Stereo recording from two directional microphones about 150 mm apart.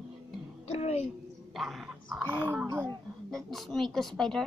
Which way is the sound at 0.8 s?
45° left (ahead or behind).